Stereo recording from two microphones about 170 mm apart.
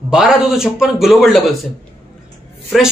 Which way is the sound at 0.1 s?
5° right (ahead or behind).